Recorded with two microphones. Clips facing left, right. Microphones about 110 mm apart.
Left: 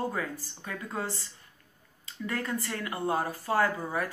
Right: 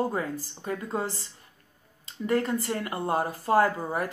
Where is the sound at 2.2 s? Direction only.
30° right (ahead or behind).